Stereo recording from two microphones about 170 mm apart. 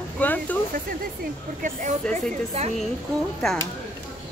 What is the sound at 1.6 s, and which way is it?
Speech, 50° right (ahead or behind).